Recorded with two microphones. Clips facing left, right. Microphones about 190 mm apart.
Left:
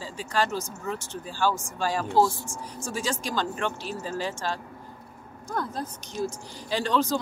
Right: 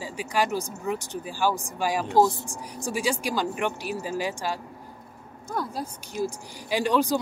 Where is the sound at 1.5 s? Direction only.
35° right (ahead or behind).